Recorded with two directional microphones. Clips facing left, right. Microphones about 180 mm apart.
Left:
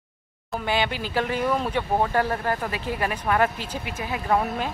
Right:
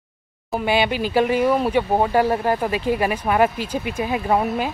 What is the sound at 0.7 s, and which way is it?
Speech, 15° right (ahead or behind).